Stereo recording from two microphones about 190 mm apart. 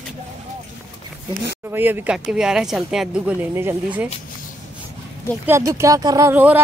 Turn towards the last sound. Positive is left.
turn(degrees=-10)  # may be behind; listen again after turning